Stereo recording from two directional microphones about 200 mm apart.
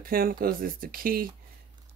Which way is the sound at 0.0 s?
45° right (ahead or behind).